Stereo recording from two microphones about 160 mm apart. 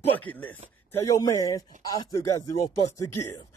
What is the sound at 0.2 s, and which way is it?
Speech, 10° left (ahead or behind).